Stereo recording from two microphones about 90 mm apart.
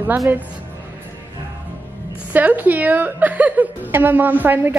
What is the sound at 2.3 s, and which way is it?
A woman's voice, 20° right (ahead or behind).